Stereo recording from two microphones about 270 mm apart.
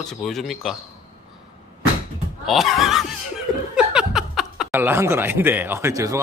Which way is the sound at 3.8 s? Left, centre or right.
Centre.